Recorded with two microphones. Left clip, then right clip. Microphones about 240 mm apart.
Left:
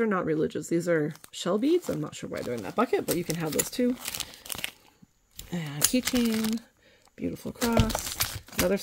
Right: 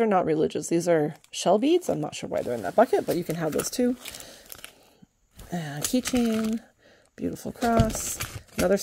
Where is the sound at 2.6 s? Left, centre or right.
Centre.